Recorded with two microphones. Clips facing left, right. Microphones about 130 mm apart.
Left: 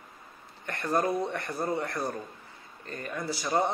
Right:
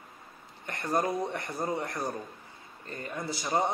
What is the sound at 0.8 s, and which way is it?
Speech, 20° right (ahead or behind).